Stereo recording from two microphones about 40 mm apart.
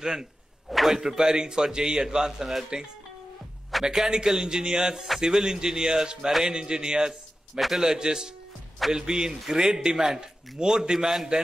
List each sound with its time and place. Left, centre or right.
0.0 s speech: centre
0.7 s speech: centre
3.9 s a man's voice: centre